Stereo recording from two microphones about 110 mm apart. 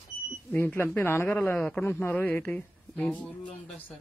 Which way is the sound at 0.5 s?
20° left (ahead or behind).